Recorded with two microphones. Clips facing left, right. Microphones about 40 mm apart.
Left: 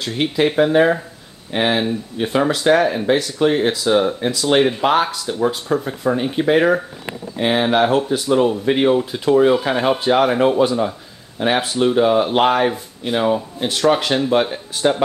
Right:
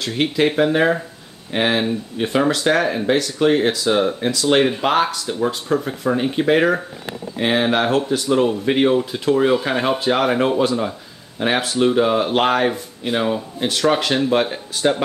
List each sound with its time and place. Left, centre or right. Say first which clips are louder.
0.0 s speech: even; centre